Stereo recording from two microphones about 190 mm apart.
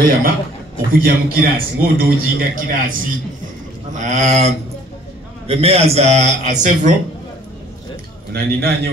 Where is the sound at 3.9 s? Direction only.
40° right (ahead or behind).